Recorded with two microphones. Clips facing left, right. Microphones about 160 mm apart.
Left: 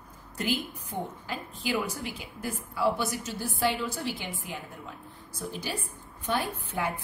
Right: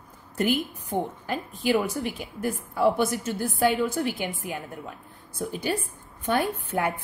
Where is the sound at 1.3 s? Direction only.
50° right (ahead or behind).